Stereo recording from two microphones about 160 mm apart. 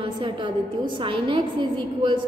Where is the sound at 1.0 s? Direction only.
30° right (ahead or behind).